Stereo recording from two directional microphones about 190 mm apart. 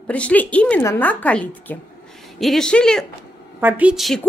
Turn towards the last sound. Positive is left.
turn(degrees=0)  # may be behind; listen again after turning